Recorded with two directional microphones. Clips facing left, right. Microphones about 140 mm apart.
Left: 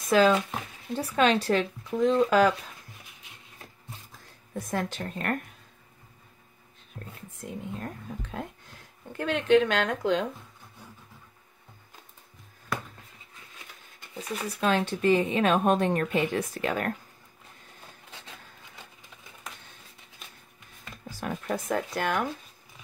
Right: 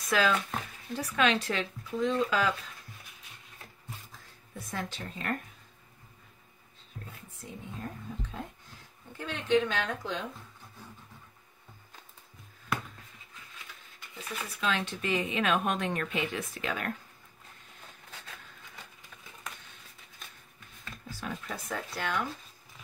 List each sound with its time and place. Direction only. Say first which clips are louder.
0.1 s speech: left 6 dB; 25° left (ahead or behind); by 2.5 s 45° left (ahead or behind)
4.6 s speech: left 7 dB; 50° left (ahead or behind)
7.0 s speech: left 5 dB; 60° left (ahead or behind)
9.1 s speech: left 6 dB; 65° left (ahead or behind)
14.1 s speech: left 6 dB; 40° left (ahead or behind)
21.2 s speech: left 8 dB; 50° left (ahead or behind)